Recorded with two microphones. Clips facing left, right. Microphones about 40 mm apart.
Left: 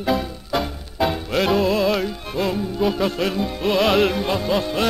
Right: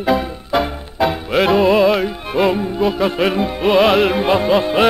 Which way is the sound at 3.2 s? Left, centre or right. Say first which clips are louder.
Right 6 dB; right.